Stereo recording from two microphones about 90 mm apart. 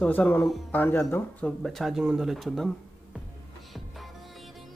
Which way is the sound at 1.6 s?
Centre (ahead or behind).